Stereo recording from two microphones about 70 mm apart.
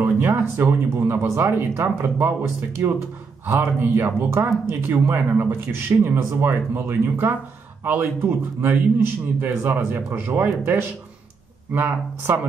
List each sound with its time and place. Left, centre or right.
0.0 s speech: right